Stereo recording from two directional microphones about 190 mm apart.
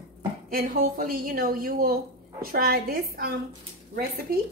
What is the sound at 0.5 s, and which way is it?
A woman's voice, 50° right (ahead or behind).